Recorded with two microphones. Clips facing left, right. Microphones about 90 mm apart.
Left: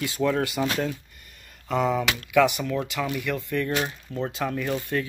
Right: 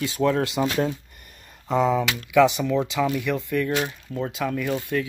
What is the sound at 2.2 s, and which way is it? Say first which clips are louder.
Speech: right 3 dB; 20° right (ahead or behind).